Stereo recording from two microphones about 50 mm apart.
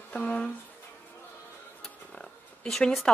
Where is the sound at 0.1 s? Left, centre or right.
Left.